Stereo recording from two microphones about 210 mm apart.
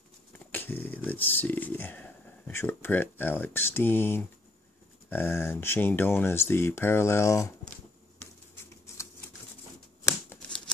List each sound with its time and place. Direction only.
0.5 s speech: 10° left (ahead or behind)
10.0 s typewriter: 5° left (ahead or behind)